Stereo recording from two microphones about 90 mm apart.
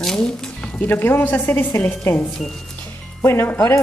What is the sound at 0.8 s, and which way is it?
Speech, 20° left (ahead or behind).